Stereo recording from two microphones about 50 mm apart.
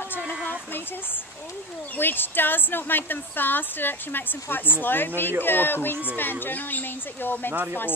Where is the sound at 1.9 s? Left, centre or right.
Left.